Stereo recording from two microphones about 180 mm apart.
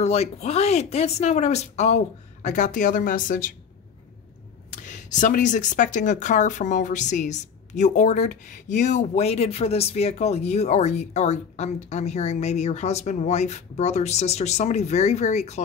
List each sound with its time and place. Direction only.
0.0 s speech: 35° left (ahead or behind)
4.7 s speech: 45° left (ahead or behind)